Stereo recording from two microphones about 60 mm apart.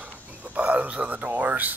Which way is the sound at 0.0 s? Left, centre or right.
Right.